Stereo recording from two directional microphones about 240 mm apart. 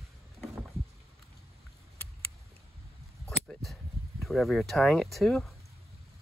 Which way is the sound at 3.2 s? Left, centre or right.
Centre.